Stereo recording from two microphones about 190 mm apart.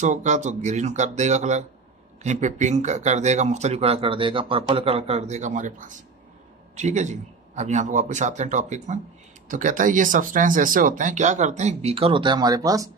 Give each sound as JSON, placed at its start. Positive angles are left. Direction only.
{"t": 0.0, "sound": "speech", "side_deg": -40}